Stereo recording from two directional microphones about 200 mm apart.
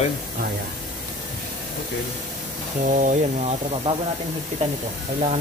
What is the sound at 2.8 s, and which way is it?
Speech, 40° right (ahead or behind).